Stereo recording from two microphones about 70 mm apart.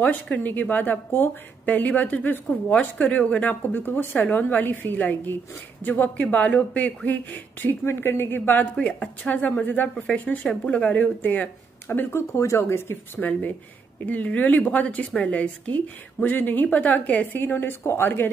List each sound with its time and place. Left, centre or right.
0.0 s a woman's voice: left
8.7 s a woman's voice: centre
11.9 s speech: left
13.2 s a woman's voice: left